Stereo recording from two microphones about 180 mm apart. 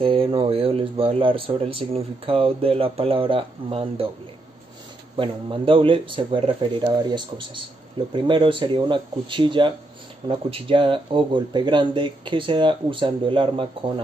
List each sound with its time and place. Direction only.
0.0 s speech: 30° right (ahead or behind)
5.1 s speech: 30° right (ahead or behind)